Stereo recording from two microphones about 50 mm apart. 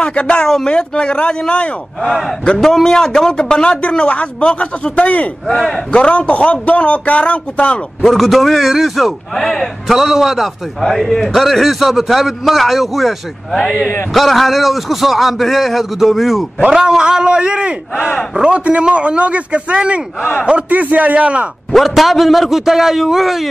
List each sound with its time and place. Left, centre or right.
0.0 s a man's voice: left
2.0 s a man's voice: centre; by 7.8 s left
8.0 s a man's voice: centre
9.9 s a man's voice: centre
17.9 s speech: left
18.3 s a man's voice: centre
21.7 s a man's voice: centre